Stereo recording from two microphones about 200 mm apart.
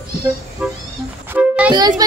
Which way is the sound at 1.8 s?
20° right (ahead or behind).